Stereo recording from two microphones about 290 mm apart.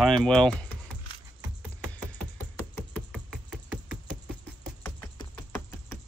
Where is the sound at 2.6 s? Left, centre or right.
Centre.